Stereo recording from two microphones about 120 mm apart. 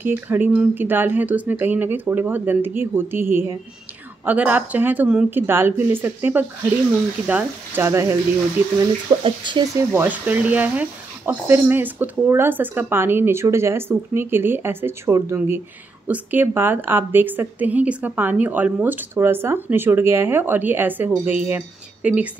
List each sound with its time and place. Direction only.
0.0 s speech: 15° right (ahead or behind)
9.2 s speech: 40° right (ahead or behind)
9.8 s speech: 15° right (ahead or behind)